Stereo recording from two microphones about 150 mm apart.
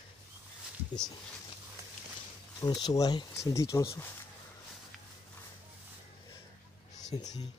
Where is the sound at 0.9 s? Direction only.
30° left (ahead or behind).